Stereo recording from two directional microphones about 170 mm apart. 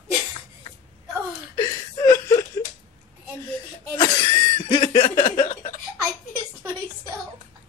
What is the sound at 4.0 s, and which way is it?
Cough, 30° left (ahead or behind).